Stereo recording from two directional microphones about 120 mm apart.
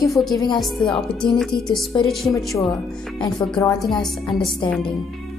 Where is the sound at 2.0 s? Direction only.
Centre (ahead or behind).